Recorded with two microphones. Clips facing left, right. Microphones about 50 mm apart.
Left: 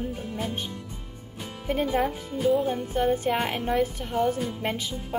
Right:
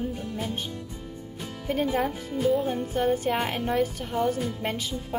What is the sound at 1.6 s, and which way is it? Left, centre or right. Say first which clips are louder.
Speech: left 1 dB; centre.